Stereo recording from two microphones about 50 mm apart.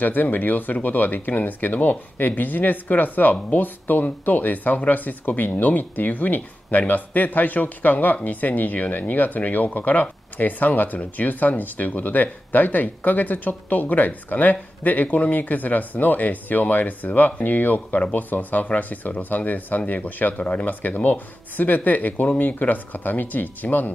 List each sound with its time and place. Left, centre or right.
0.0 s speech: left